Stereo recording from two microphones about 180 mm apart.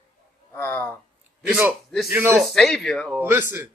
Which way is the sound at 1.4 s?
10° right (ahead or behind).